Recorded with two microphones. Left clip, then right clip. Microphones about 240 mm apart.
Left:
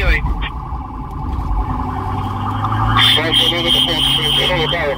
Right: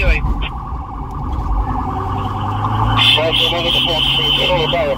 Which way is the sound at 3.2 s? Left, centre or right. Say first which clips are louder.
Even; left.